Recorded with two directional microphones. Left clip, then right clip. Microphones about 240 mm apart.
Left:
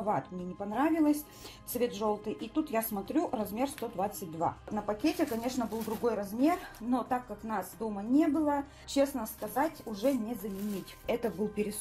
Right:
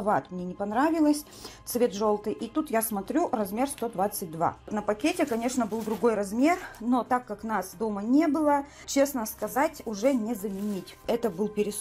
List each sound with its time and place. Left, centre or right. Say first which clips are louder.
0.7 s speech: right 4 dB; right